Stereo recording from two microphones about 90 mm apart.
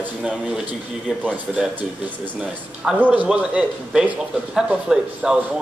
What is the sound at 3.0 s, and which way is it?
Speech, 15° right (ahead or behind).